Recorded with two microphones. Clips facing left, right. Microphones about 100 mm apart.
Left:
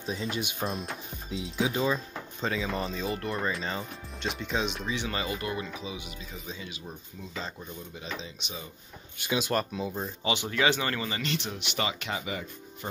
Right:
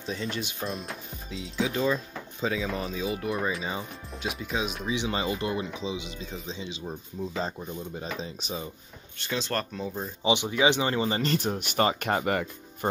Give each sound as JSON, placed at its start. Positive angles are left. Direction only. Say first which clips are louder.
{"t": 0.1, "sound": "speech", "louder": "even", "side_deg": 10}
{"t": 0.7, "sound": "speech", "louder": "even", "side_deg": 0}
{"t": 1.7, "sound": "speech", "louder": "right 2 dB", "side_deg": 10}
{"t": 2.4, "sound": "speech", "louder": "right 1 dB", "side_deg": 0}
{"t": 4.9, "sound": "speech", "louder": "right 3 dB", "side_deg": -20}
{"t": 7.3, "sound": "speech", "louder": "right 3 dB", "side_deg": -40}
{"t": 9.2, "sound": "speech", "louder": "left 2 dB", "side_deg": 10}
{"t": 10.2, "sound": "speech", "louder": "right 4 dB", "side_deg": -20}
{"t": 11.1, "sound": "speech", "louder": "right 6 dB", "side_deg": -40}